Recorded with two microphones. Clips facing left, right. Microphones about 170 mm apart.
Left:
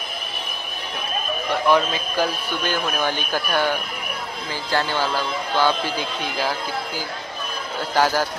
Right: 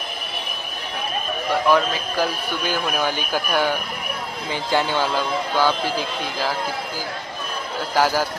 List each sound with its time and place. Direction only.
1.7 s a man's voice: 5° right (ahead or behind)
5.6 s speech: centre (ahead or behind)
7.9 s a man's voice: 5° right (ahead or behind)